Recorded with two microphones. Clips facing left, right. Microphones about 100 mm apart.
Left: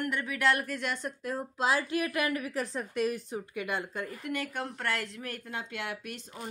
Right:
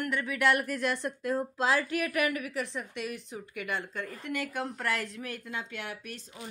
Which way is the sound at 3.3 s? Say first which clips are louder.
Left 2 dB; 25° left (ahead or behind).